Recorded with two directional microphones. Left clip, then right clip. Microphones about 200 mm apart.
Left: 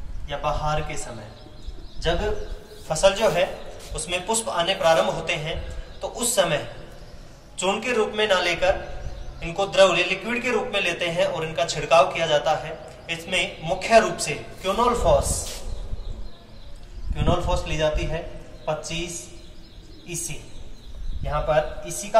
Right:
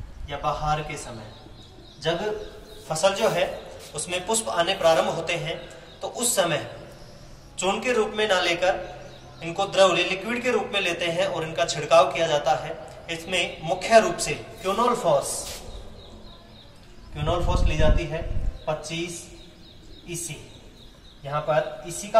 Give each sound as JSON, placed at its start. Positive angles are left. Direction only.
{"t": 0.3, "sound": "a man's voice", "side_deg": -10}
{"t": 17.1, "sound": "a man's voice", "side_deg": -5}